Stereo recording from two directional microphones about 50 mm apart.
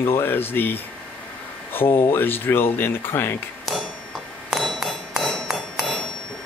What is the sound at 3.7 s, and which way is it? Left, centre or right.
Tick-tock, centre.